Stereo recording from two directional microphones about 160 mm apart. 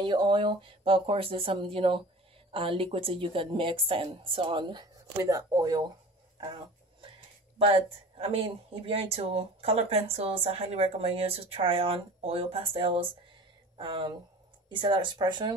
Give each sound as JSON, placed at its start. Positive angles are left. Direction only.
{"t": 0.0, "sound": "speech", "side_deg": -30}
{"t": 8.2, "sound": "speech", "side_deg": -35}